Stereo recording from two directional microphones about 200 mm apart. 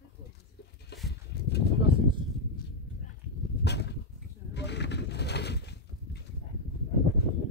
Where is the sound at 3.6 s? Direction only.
55° left (ahead or behind).